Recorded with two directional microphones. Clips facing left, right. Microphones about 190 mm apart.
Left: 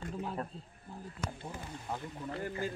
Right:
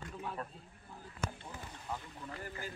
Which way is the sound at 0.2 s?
30° left (ahead or behind).